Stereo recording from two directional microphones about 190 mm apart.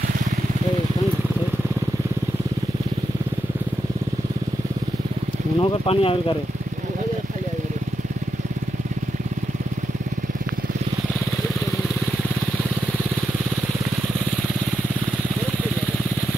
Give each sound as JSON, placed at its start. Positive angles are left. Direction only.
{"t": 5.6, "sound": "speech", "side_deg": 30}